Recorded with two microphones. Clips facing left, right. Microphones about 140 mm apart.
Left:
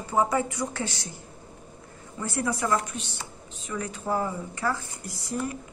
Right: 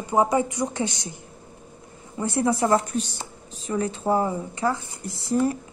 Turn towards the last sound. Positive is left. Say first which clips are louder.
# right 8 dB
turn(degrees=-30)  # may be behind; listen again after turning